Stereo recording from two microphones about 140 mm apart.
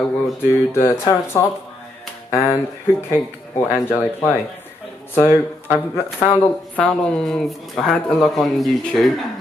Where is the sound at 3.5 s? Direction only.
20° left (ahead or behind).